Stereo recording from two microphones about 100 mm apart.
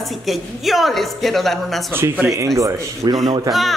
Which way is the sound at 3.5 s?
Centre (ahead or behind).